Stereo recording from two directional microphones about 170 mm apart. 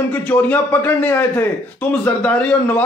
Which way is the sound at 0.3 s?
10° left (ahead or behind).